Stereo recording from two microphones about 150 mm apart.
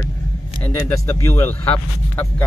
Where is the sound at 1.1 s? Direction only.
15° left (ahead or behind).